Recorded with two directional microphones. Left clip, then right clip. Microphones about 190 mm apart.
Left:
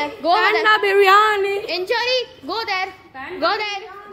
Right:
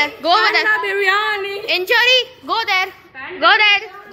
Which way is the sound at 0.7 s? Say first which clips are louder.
Left 3 dB; 50° left (ahead or behind).